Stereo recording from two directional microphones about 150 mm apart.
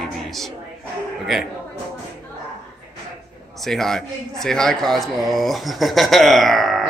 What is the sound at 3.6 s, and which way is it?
Speech, centre (ahead or behind).